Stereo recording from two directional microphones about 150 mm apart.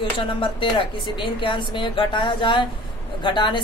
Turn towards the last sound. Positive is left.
turn(degrees=30)  # may be behind; listen again after turning